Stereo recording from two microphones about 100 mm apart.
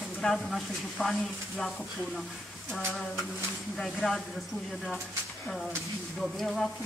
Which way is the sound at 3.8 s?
5° left (ahead or behind).